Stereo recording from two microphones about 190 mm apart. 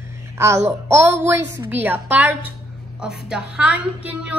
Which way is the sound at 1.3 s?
70° right (ahead or behind).